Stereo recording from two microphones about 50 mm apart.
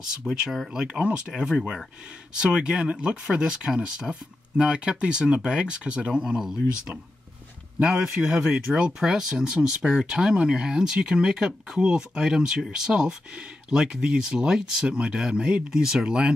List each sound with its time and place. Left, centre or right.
0.2 s speech: centre
7.8 s speech: centre